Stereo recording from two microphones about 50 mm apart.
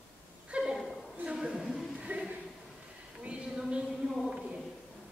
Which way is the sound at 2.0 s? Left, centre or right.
Right.